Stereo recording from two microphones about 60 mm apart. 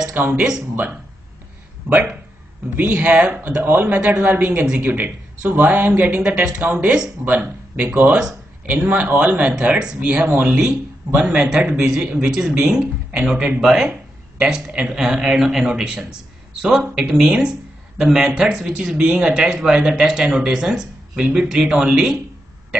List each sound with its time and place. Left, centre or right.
0.2 s speech: right
2.7 s speech: right
9.5 s speech: centre
10.5 s speech: centre